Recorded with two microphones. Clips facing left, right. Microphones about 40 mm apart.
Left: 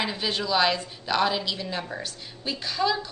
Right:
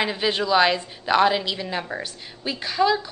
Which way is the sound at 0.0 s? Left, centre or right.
Centre.